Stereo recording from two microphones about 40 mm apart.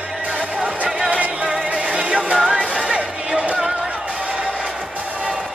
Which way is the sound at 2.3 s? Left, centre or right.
Centre.